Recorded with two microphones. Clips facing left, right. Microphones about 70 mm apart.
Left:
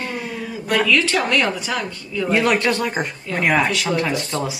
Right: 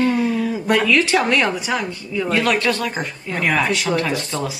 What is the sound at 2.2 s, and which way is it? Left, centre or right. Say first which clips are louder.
Speech: left 1 dB; left.